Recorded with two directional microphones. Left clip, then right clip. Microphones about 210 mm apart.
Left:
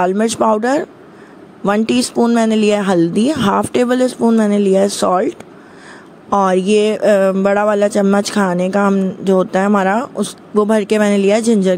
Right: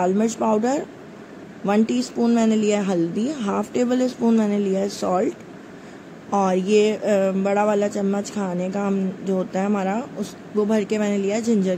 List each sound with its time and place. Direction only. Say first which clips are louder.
0.0 s speech: left 7 dB; 40° left (ahead or behind)
6.3 s speech: left 6 dB; 40° left (ahead or behind)